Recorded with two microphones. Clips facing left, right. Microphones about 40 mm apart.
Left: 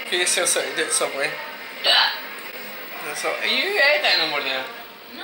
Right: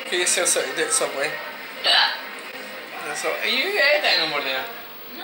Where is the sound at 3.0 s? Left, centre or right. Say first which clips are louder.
Even; centre.